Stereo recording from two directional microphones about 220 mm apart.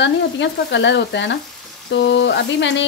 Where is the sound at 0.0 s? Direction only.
55° left (ahead or behind).